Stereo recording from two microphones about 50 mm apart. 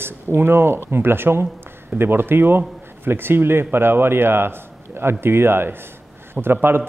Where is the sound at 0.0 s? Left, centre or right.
Right.